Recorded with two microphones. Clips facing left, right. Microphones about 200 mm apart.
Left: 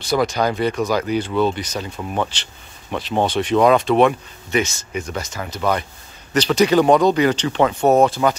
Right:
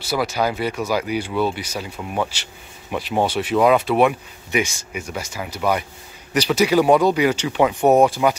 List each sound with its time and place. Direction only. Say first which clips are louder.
0.0 s speech: left 3 dB; 5° right (ahead or behind)